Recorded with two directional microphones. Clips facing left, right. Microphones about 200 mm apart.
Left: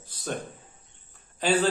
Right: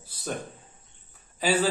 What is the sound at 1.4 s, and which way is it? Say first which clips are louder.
Speech: left 1 dB; 5° right (ahead or behind).